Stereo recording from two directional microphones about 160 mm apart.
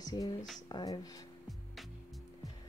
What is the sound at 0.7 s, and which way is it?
Speech, 25° left (ahead or behind).